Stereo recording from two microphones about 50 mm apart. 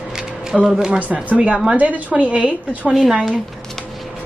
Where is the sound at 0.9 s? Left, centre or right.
Right.